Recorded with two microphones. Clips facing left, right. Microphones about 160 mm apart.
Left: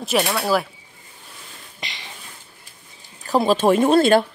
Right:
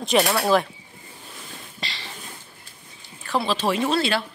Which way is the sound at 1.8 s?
20° left (ahead or behind).